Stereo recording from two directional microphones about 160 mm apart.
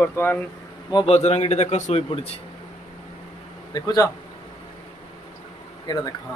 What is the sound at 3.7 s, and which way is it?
Speech, 25° left (ahead or behind).